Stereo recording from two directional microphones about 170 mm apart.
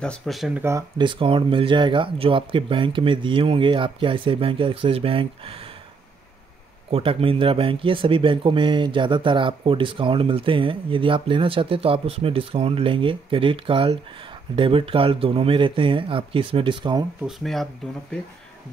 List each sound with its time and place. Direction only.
0.0 s speech: 5° left (ahead or behind)
0.6 s speech: 15° right (ahead or behind)
0.9 s speech: 30° right (ahead or behind)
6.9 s speech: 35° right (ahead or behind)
17.2 s speech: centre (ahead or behind)